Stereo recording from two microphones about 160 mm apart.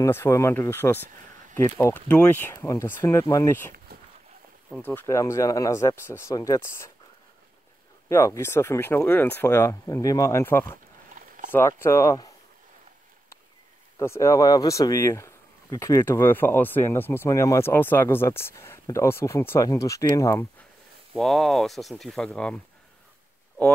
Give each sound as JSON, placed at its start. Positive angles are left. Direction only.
{"t": 0.0, "sound": "speech", "side_deg": 15}
{"t": 4.8, "sound": "speech", "side_deg": 15}
{"t": 8.1, "sound": "speech", "side_deg": 15}
{"t": 11.1, "sound": "a sound", "side_deg": -55}
{"t": 11.5, "sound": "speech", "side_deg": 15}
{"t": 13.9, "sound": "speech", "side_deg": 20}
{"t": 21.1, "sound": "speech", "side_deg": 0}